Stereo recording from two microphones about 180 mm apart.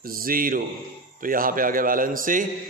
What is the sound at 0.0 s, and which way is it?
A man's voice, 55° right (ahead or behind).